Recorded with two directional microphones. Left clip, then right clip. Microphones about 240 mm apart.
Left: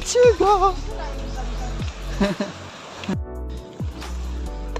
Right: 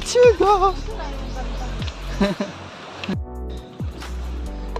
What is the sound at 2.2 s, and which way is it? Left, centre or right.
Speech, centre.